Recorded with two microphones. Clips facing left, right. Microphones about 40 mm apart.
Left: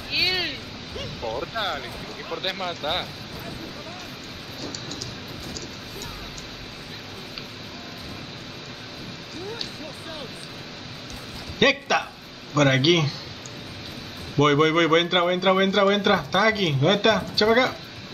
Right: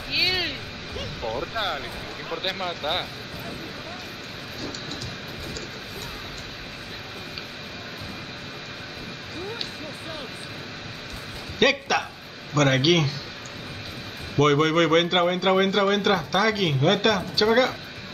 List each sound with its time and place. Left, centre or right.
0.1 s a sound: centre
2.7 s speech: centre
11.6 s speech: centre
14.4 s speech: centre